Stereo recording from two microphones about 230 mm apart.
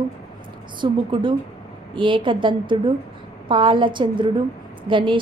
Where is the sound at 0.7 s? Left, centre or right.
Right.